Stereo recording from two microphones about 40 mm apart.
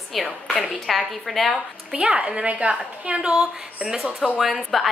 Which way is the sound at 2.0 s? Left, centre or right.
Right.